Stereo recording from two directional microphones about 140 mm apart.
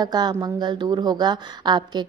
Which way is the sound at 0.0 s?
30° right (ahead or behind).